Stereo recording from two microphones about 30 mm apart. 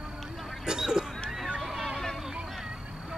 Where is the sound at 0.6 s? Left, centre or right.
Right.